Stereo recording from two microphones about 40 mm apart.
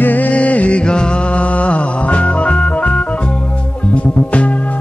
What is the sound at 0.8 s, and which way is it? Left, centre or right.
Music, left.